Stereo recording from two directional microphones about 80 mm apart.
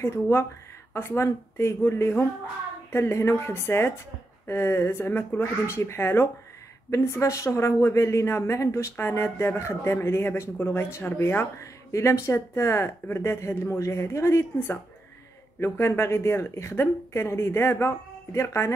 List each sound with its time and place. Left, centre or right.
0.0 s speech: left